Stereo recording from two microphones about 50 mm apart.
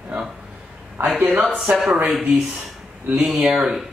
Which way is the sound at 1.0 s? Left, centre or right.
Right.